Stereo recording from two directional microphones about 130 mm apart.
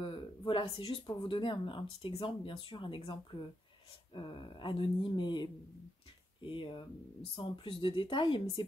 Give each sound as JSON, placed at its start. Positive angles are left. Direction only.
{"t": 0.0, "sound": "speech", "side_deg": 40}